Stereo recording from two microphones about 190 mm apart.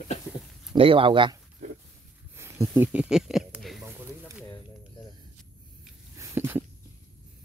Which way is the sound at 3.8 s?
10° right (ahead or behind).